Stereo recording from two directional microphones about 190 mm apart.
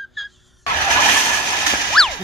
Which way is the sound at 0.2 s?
Centre (ahead or behind).